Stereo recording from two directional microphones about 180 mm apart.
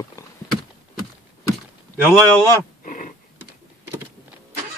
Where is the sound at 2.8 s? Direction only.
45° left (ahead or behind).